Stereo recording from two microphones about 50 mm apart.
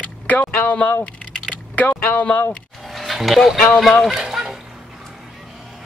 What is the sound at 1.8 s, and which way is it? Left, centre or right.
Speech, left.